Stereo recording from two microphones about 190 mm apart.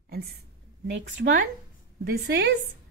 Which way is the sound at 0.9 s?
70° right (ahead or behind).